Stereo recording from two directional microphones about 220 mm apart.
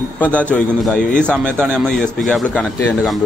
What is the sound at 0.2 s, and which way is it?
Speech, 5° left (ahead or behind).